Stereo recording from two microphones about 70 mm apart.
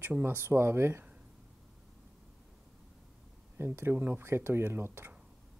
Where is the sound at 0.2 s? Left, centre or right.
Right.